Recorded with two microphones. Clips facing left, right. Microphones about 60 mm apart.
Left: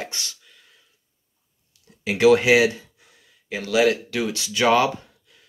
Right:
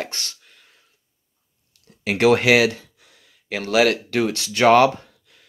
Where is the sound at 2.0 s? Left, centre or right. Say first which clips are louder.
Even; right.